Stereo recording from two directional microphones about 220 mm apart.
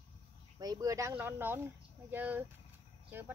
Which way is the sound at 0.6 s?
15° right (ahead or behind).